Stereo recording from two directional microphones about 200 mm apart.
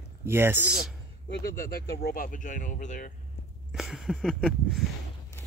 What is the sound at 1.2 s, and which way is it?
Speech, 55° left (ahead or behind).